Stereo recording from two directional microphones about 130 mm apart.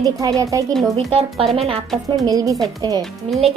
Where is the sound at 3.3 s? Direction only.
Centre (ahead or behind).